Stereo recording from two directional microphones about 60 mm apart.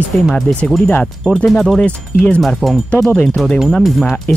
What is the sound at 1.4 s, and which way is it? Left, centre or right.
Speech, centre.